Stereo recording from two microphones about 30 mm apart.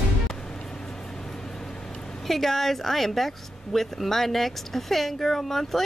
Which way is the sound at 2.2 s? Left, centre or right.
Centre.